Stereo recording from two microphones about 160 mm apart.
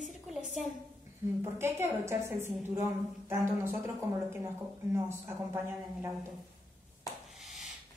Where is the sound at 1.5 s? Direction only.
15° right (ahead or behind).